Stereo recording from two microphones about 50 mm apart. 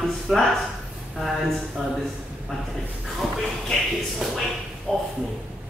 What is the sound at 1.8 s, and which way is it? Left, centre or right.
Speech, centre.